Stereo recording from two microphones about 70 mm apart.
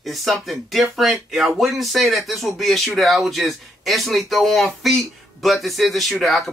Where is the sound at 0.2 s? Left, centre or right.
Centre.